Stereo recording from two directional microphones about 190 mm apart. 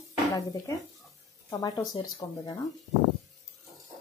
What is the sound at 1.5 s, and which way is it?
Speech, 20° left (ahead or behind).